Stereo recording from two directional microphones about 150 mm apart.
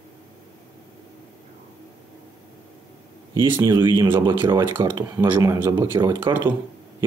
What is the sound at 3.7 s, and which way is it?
Speech, 30° right (ahead or behind).